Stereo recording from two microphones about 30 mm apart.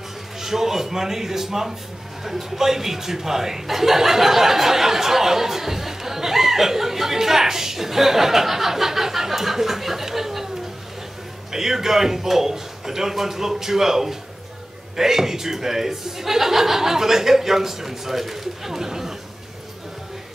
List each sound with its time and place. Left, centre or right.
0.4 s speech: centre
11.5 s speech: centre